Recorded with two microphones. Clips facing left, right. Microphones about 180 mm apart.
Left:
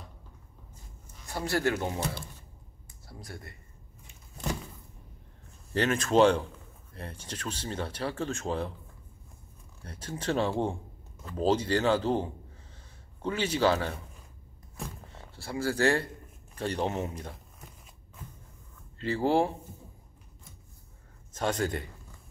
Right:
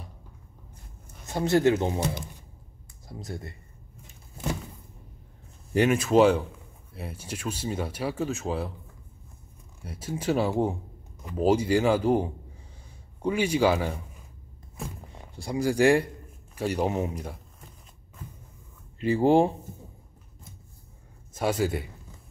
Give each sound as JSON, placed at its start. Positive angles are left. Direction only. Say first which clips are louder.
{"t": 1.2, "sound": "speech", "louder": "right 7 dB", "side_deg": -20}
{"t": 5.7, "sound": "speech", "louder": "right 5 dB", "side_deg": -10}
{"t": 9.8, "sound": "speech", "louder": "right 4 dB", "side_deg": -10}
{"t": 15.1, "sound": "a man's voice", "louder": "right 5 dB", "side_deg": -15}
{"t": 18.9, "sound": "speech", "louder": "right 5 dB", "side_deg": -15}
{"t": 21.3, "sound": "a man's voice", "louder": "right 4 dB", "side_deg": -10}